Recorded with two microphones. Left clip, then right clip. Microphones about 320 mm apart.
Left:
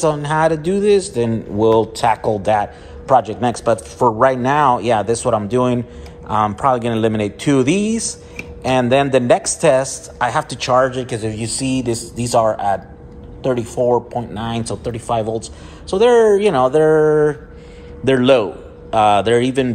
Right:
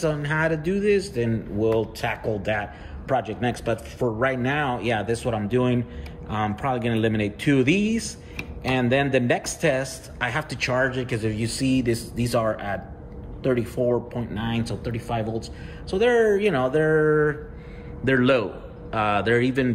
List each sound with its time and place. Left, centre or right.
0.0 s speech: centre
2.2 s speech: left
3.1 s speech: centre